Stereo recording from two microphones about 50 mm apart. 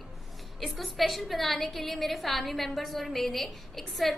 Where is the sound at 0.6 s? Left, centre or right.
Centre.